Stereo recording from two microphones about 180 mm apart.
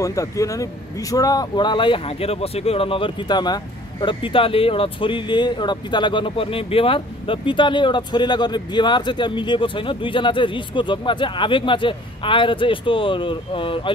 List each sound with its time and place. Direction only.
0.0 s speech: 15° left (ahead or behind)